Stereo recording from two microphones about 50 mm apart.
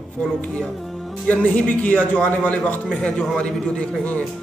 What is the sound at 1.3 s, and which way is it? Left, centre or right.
A man's voice, left.